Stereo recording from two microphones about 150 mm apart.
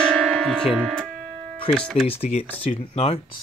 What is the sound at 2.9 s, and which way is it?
Speech, 40° left (ahead or behind).